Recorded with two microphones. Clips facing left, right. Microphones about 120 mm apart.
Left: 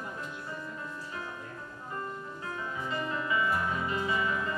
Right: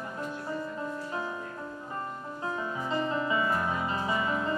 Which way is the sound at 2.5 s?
30° right (ahead or behind).